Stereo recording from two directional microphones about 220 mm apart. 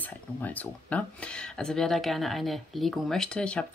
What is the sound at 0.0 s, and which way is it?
Speech, 10° left (ahead or behind).